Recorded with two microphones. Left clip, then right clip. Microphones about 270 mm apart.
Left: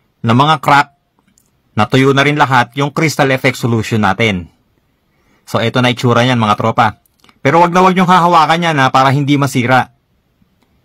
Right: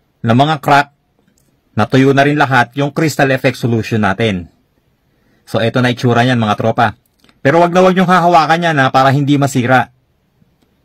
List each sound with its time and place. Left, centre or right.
0.2 s speech: centre
2.0 s speech: centre
5.5 s speech: centre